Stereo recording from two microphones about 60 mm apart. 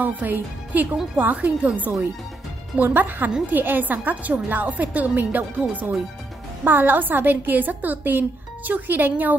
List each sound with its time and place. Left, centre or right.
0.0 s a woman's voice: right